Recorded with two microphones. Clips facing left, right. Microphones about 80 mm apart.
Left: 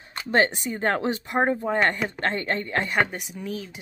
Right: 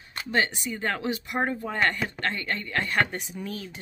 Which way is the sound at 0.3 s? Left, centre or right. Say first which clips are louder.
Left 5 dB; left.